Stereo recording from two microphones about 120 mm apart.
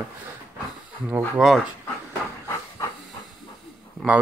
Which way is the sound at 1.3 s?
Centre (ahead or behind).